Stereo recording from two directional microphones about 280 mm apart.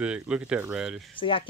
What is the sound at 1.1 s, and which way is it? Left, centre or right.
Speech, centre.